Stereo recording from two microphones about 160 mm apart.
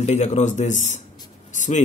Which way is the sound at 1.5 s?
50° left (ahead or behind).